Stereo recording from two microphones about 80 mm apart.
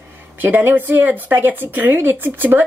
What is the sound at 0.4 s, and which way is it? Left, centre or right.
Speech, right.